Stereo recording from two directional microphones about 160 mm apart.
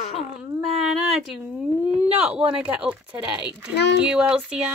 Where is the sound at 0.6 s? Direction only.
Centre (ahead or behind).